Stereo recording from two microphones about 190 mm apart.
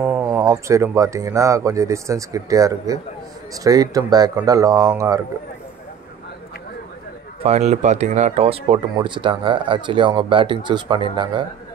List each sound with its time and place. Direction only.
0.0 s speech: 5° right (ahead or behind)
7.4 s speech: 35° right (ahead or behind)